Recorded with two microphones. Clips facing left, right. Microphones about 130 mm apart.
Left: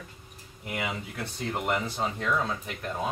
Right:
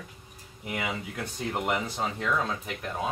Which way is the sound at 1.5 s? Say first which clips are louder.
Even; 5° right (ahead or behind).